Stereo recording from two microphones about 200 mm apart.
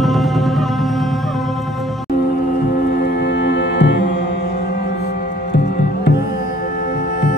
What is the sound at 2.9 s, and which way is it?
Music, 50° left (ahead or behind).